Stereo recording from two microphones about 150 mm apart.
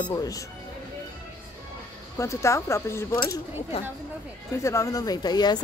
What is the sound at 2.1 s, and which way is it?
Speech, 20° left (ahead or behind).